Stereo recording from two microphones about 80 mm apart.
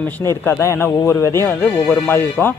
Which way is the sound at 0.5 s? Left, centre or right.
Left.